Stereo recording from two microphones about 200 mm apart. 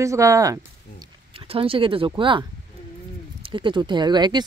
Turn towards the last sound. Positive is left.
turn(degrees=-20)  # may be behind; listen again after turning